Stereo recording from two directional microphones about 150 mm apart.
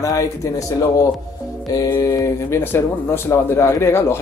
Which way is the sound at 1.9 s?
20° left (ahead or behind).